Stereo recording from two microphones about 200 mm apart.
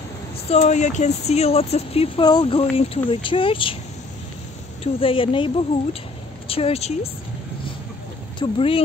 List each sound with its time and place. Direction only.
0.5 s speech: 35° left (ahead or behind)
4.8 s speech: 25° left (ahead or behind)
8.4 s speech: 25° left (ahead or behind)